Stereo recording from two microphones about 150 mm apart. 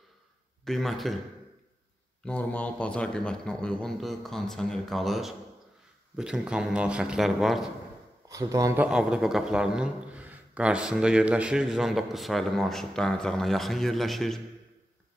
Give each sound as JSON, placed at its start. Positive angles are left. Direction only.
{"t": 0.7, "sound": "a man's voice", "side_deg": 0}
{"t": 2.2, "sound": "a man's voice", "side_deg": 10}
{"t": 8.3, "sound": "speech", "side_deg": -20}
{"t": 8.9, "sound": "a man's voice", "side_deg": -5}